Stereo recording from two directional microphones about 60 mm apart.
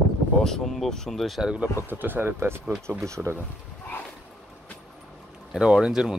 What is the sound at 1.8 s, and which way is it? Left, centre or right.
Speech, right.